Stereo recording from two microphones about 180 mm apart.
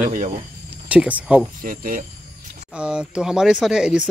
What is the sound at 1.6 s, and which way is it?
Speech, 50° right (ahead or behind).